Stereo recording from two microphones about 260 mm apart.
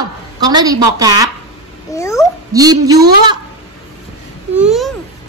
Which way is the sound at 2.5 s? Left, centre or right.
Centre.